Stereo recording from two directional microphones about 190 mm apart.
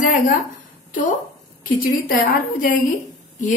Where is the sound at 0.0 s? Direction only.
40° left (ahead or behind).